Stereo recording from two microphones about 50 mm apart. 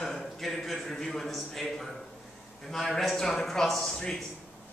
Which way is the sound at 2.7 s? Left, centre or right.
Centre.